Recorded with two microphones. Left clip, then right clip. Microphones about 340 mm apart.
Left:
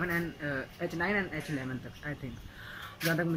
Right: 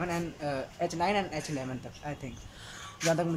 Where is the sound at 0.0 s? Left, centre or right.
Centre.